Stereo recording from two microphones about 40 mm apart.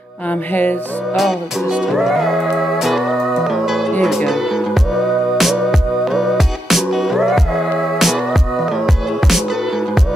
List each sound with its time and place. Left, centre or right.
1.7 s music: centre